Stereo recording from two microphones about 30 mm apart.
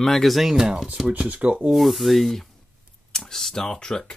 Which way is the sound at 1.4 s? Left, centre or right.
Right.